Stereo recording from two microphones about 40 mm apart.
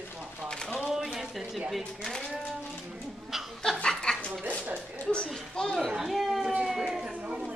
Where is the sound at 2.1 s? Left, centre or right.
Centre.